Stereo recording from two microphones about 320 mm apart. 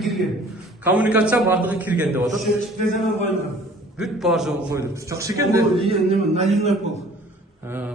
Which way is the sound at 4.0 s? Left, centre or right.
Centre.